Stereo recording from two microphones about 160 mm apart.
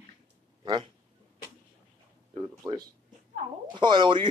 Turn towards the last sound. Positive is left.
turn(degrees=-30)  # may be behind; listen again after turning